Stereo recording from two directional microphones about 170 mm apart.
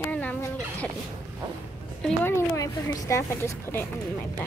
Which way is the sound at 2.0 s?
15° left (ahead or behind).